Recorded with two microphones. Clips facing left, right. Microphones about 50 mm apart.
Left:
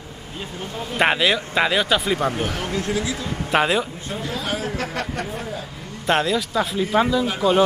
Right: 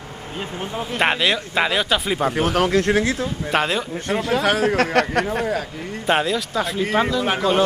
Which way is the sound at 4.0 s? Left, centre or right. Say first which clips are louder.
Right 8 dB; right.